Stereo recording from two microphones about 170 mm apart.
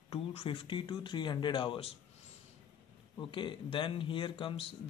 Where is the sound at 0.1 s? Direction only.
35° left (ahead or behind).